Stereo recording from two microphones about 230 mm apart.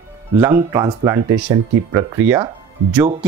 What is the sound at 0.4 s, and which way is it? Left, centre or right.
Speech, centre.